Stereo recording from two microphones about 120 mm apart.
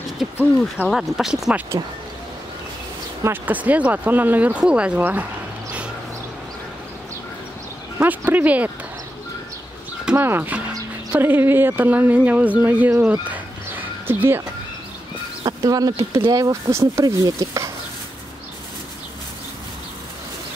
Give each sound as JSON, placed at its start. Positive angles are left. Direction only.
{"t": 0.8, "sound": "speech", "side_deg": -5}
{"t": 3.3, "sound": "speech", "side_deg": -15}
{"t": 8.0, "sound": "speech", "side_deg": -15}
{"t": 10.0, "sound": "speech", "side_deg": -20}
{"t": 15.4, "sound": "speech", "side_deg": -30}